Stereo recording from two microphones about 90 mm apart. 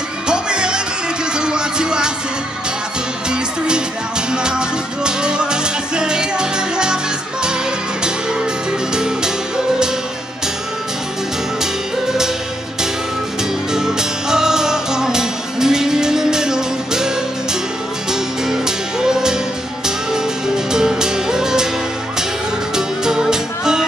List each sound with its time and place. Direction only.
0.3 s music: 10° right (ahead or behind)
3.3 s music: 10° right (ahead or behind)
8.9 s music: 10° right (ahead or behind)
13.7 s music: 5° right (ahead or behind)
18.5 s music: 5° right (ahead or behind)
22.8 s music: 5° right (ahead or behind)